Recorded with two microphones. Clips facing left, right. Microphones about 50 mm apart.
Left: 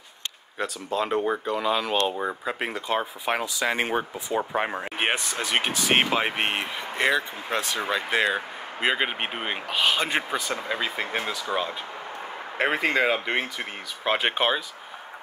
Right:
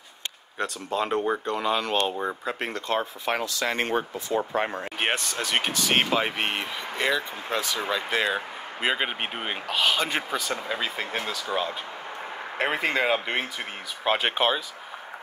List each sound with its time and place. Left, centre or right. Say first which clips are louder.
0.6 s speech: even; centre